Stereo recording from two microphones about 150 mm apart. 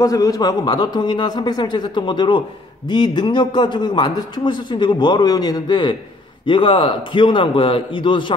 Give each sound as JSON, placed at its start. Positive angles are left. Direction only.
{"t": 0.0, "sound": "a man's voice", "side_deg": 20}